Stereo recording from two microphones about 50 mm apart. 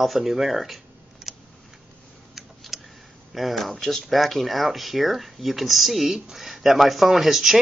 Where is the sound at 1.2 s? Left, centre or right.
Centre.